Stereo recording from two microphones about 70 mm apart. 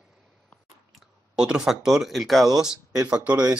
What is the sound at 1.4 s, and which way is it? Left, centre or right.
Speech, centre.